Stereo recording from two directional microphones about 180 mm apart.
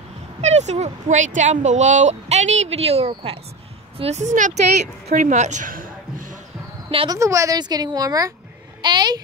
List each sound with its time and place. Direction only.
0.4 s a woman's voice: 40° right (ahead or behind)
6.9 s a woman's voice: 30° right (ahead or behind)
7.2 s a woman's voice: 15° right (ahead or behind)